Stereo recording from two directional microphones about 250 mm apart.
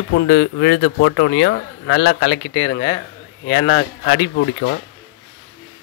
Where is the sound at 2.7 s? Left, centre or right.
Left.